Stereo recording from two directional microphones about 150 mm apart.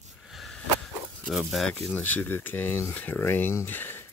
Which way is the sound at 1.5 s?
Centre (ahead or behind).